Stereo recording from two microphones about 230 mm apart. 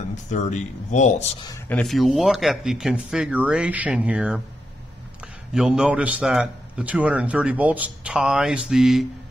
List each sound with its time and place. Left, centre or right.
0.1 s speech: left
1.4 s speech: centre
1.8 s a man's voice: centre